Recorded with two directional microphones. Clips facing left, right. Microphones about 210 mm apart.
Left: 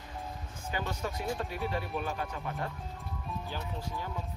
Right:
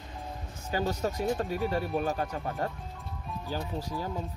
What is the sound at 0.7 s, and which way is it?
Speech, 40° right (ahead or behind).